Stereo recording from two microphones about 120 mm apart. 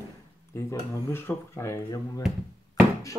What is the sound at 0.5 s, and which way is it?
Speech, 25° left (ahead or behind).